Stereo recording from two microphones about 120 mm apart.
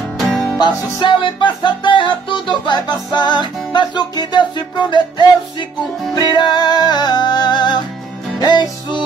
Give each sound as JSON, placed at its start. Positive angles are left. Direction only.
{"t": 0.3, "sound": "music", "side_deg": 10}
{"t": 0.6, "sound": "music", "side_deg": 35}